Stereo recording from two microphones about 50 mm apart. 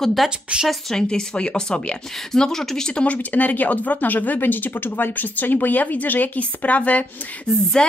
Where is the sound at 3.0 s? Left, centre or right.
Left.